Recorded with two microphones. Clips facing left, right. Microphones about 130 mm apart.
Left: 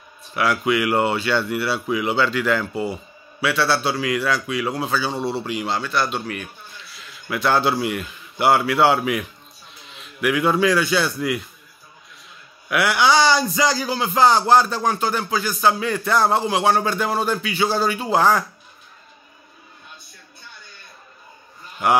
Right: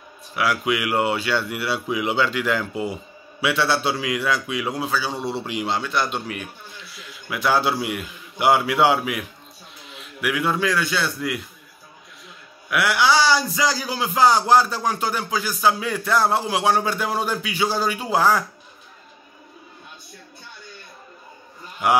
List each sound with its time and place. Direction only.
0.3 s a man's voice: 5° right (ahead or behind)
4.8 s a man's voice: 5° right (ahead or behind)
5.2 s a man's voice: 20° right (ahead or behind); by 11.4 s centre (ahead or behind)
12.6 s a man's voice: centre (ahead or behind)
21.8 s a man's voice: 10° right (ahead or behind)